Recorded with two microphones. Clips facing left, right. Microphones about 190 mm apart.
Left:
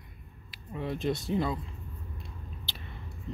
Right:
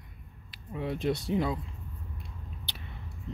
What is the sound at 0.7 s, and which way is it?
Speech, 10° right (ahead or behind).